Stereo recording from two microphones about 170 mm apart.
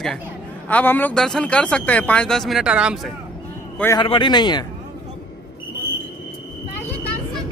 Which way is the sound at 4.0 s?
30° left (ahead or behind).